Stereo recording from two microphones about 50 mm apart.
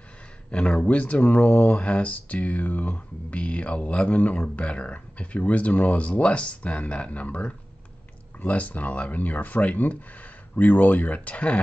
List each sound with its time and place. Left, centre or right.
0.5 s speech: centre